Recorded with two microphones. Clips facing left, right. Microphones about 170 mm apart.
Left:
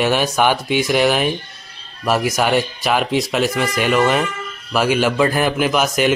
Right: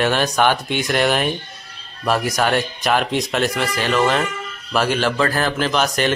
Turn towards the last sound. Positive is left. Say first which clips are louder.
# left 2 dB
turn(degrees=5)  # may be behind; listen again after turning